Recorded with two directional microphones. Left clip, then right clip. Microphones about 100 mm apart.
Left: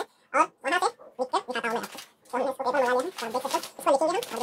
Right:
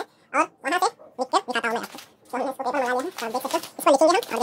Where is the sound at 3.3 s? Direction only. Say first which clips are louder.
Right 2 dB; 50° right (ahead or behind).